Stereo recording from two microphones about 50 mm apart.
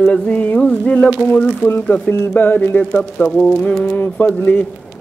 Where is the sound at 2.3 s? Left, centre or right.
Left.